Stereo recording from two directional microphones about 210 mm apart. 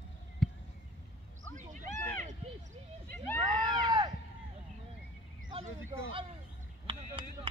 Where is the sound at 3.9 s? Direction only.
20° right (ahead or behind).